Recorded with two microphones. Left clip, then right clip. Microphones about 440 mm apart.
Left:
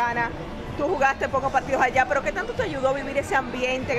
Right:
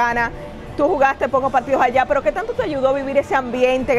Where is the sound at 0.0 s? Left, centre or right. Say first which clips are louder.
Right 6 dB; right.